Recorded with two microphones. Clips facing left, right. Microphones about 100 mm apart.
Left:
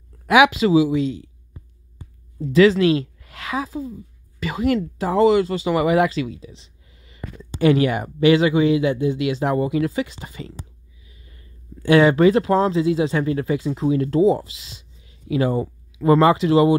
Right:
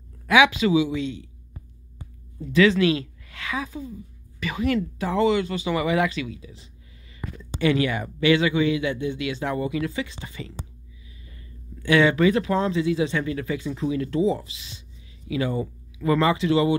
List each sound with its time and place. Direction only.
0.7 s speech: 40° left (ahead or behind)
2.4 s a woman's voice: 35° left (ahead or behind)
7.5 s speech: 40° left (ahead or behind)
11.8 s speech: 40° left (ahead or behind)